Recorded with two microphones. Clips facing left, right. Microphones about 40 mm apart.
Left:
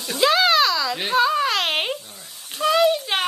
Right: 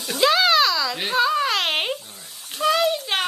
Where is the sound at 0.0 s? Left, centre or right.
Centre.